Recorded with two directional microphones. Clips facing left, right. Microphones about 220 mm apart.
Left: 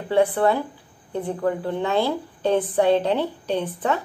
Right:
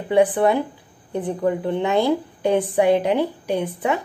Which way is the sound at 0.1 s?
15° right (ahead or behind).